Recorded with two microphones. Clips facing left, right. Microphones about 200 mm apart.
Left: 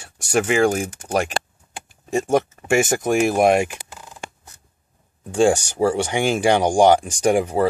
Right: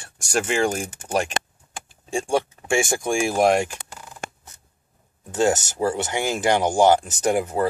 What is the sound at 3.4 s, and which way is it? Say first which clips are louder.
Speech: left 2 dB; 15° left (ahead or behind).